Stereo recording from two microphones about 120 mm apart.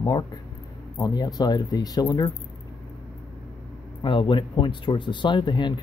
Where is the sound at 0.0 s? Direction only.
35° left (ahead or behind).